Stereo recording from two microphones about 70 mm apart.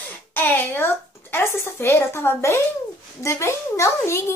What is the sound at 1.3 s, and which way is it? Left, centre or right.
A child's voice, left.